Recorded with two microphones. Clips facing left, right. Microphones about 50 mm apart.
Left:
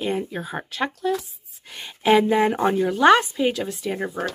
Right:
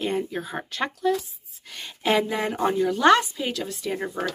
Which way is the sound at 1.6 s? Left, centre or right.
Centre.